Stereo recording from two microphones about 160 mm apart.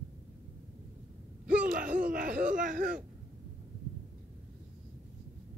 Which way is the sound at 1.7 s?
55° right (ahead or behind).